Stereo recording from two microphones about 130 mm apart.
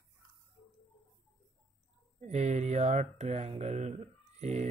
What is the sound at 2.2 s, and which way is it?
Speech, 60° right (ahead or behind).